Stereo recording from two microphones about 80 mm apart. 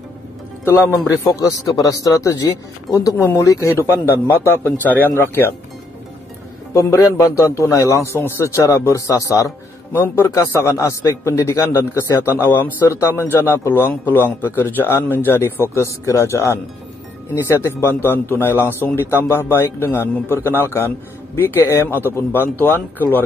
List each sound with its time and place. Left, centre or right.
0.7 s a man's voice: left
6.7 s a man's voice: left
9.9 s a man's voice: left
10.3 s a man's voice: left
13.3 s a man's voice: left